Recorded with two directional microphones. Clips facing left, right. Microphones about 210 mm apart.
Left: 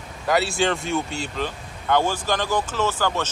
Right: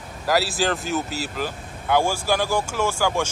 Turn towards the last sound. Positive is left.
turn(degrees=-10)  # may be behind; listen again after turning